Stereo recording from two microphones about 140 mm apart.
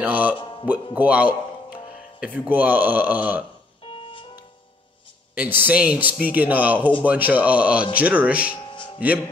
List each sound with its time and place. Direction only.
0.0 s speech: 10° right (ahead or behind)
0.4 s music: 35° left (ahead or behind)
0.9 s a man's voice: 10° right (ahead or behind)
3.9 s music: 40° left (ahead or behind)
5.3 s speech: 10° right (ahead or behind)